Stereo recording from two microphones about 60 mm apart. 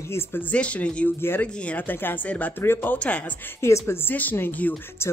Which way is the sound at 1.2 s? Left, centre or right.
Left.